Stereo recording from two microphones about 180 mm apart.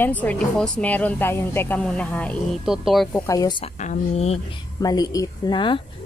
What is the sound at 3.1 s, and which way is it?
Speech, 20° left (ahead or behind).